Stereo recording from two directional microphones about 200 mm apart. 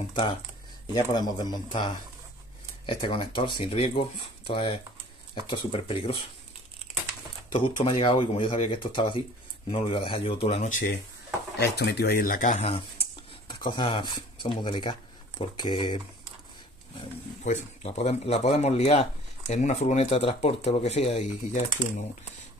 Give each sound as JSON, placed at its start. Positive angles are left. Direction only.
{"t": 0.1, "sound": "speech", "side_deg": 25}
{"t": 2.9, "sound": "speech", "side_deg": 25}
{"t": 7.8, "sound": "speech", "side_deg": 25}
{"t": 11.5, "sound": "speech", "side_deg": 55}
{"t": 17.4, "sound": "speech", "side_deg": 35}